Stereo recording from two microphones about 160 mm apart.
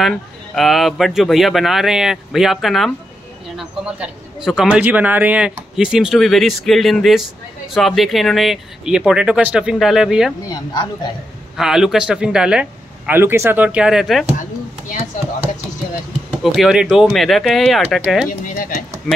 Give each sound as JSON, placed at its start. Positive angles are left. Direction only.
{"t": 0.0, "sound": "a man's voice", "side_deg": 0}
{"t": 10.5, "sound": "speech", "side_deg": 25}
{"t": 11.5, "sound": "a man's voice", "side_deg": -5}
{"t": 16.3, "sound": "a man's voice", "side_deg": -5}
{"t": 18.5, "sound": "speech", "side_deg": 60}